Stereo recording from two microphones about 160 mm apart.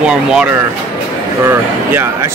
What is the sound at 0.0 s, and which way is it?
A man's voice, 5° right (ahead or behind).